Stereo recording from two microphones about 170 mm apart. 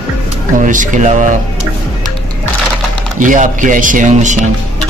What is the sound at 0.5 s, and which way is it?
Speech, 50° right (ahead or behind).